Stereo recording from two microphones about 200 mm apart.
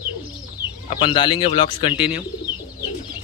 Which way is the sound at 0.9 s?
25° left (ahead or behind).